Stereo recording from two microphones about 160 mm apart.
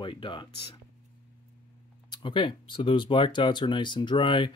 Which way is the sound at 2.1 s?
30° left (ahead or behind).